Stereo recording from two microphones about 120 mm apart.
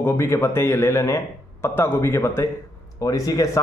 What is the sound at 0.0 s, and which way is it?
A man's voice, 20° left (ahead or behind).